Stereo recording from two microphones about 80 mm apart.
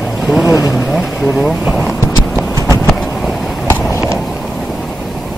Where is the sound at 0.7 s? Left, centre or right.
Centre.